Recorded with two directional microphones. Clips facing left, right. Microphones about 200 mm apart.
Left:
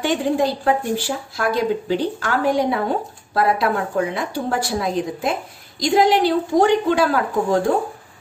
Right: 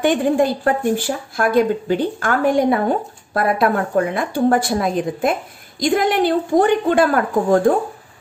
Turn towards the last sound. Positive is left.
turn(degrees=-50)  # may be behind; listen again after turning